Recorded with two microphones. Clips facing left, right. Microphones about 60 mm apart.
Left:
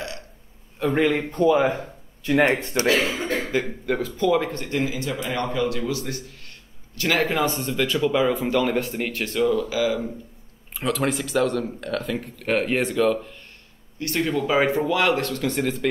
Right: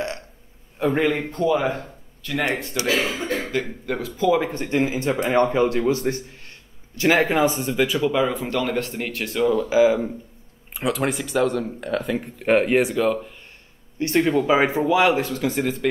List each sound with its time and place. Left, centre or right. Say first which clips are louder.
0.7 s speech: even; centre
2.8 s speech: left 3 dB; left
3.5 s speech: left 2 dB; centre
4.5 s a man's voice: right 3 dB; right
7.0 s speech: right 4 dB; centre
9.5 s speech: right 5 dB; centre
10.7 s speech: right 1 dB; centre
13.9 s speech: right 5 dB; right; by 15.9 s centre